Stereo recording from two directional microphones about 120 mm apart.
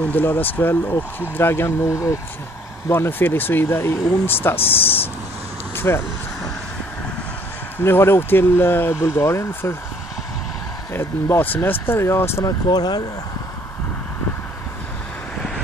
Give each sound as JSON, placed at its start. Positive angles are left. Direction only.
{"t": 0.0, "sound": "speech", "side_deg": 15}
{"t": 5.8, "sound": "vehicle", "side_deg": 20}
{"t": 7.8, "sound": "speech", "side_deg": 20}
{"t": 10.9, "sound": "speech", "side_deg": 20}
{"t": 12.6, "sound": "speech", "side_deg": 35}